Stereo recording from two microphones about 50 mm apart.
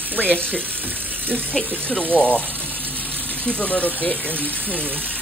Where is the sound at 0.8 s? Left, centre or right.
Right.